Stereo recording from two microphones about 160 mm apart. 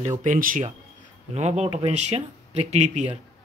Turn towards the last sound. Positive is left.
turn(degrees=-45)  # may be behind; listen again after turning